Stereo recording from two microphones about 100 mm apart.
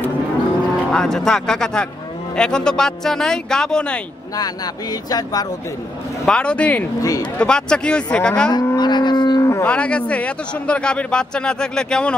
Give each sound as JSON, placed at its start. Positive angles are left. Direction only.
{"t": 0.9, "sound": "a man's voice", "side_deg": 5}
{"t": 5.1, "sound": "speech", "side_deg": 40}
{"t": 6.2, "sound": "a man's voice", "side_deg": 10}
{"t": 7.0, "sound": "speech", "side_deg": 40}
{"t": 7.3, "sound": "a man's voice", "side_deg": 10}
{"t": 8.5, "sound": "livestock", "side_deg": 45}
{"t": 9.4, "sound": "livestock", "side_deg": 25}
{"t": 9.7, "sound": "a man's voice", "side_deg": 10}